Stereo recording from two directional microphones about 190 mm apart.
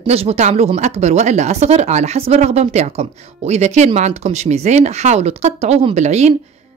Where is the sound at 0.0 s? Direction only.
30° right (ahead or behind).